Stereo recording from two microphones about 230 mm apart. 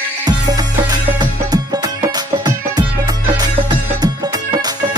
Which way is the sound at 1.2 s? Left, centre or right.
Centre.